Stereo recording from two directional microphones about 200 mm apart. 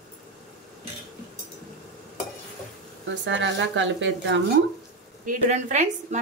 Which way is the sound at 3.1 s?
65° right (ahead or behind).